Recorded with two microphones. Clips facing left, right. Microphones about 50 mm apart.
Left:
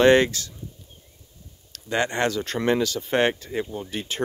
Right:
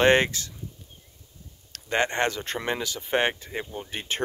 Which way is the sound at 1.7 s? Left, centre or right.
Right.